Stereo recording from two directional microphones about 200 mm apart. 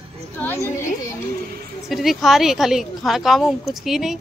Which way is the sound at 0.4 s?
10° left (ahead or behind).